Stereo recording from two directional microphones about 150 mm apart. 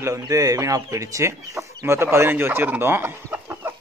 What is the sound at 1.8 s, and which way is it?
Chicken, 15° right (ahead or behind).